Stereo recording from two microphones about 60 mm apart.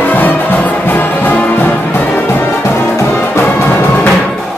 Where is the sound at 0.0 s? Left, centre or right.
Left.